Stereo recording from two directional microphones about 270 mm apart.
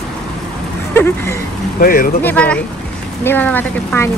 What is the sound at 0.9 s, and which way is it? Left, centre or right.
Speech, centre.